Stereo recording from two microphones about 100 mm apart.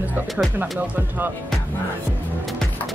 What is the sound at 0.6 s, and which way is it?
Speech, centre (ahead or behind).